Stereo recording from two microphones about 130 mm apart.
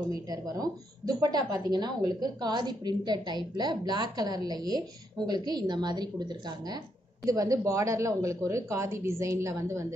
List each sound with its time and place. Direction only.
0.1 s a woman's voice: 30° right (ahead or behind)